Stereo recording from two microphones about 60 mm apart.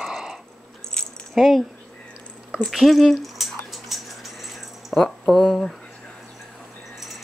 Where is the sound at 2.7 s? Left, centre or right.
Centre.